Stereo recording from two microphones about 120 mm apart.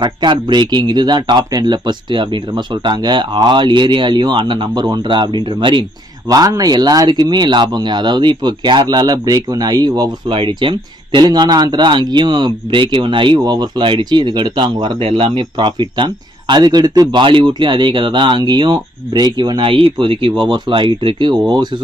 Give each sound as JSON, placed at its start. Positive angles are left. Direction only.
{"t": 0.0, "sound": "speech", "side_deg": -40}
{"t": 6.2, "sound": "speech", "side_deg": -30}
{"t": 15.5, "sound": "speech", "side_deg": -40}